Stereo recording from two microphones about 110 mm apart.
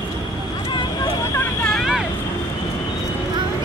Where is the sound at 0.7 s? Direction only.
40° left (ahead or behind).